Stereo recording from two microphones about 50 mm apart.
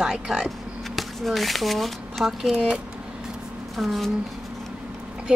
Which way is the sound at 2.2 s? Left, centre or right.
Centre.